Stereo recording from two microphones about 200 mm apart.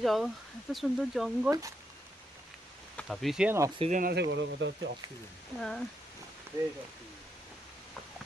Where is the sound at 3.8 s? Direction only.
40° right (ahead or behind).